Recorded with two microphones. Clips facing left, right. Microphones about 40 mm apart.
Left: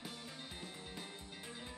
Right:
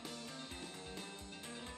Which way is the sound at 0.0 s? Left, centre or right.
Centre.